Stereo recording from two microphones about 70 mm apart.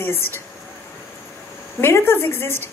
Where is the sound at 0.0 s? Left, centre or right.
Left.